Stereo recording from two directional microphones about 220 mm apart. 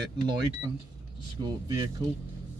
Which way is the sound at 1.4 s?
15° right (ahead or behind).